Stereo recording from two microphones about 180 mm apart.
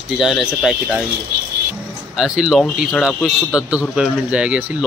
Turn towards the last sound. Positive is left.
turn(degrees=-5)  # may be behind; listen again after turning